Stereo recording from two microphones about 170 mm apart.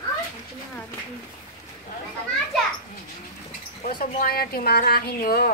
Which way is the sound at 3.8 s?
60° left (ahead or behind).